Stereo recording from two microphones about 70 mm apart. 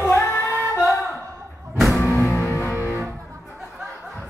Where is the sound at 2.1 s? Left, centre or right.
Left.